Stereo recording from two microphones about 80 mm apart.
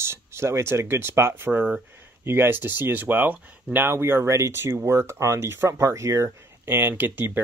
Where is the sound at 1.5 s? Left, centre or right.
Centre.